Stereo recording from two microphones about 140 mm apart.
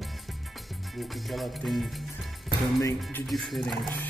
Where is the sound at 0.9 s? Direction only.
Centre (ahead or behind).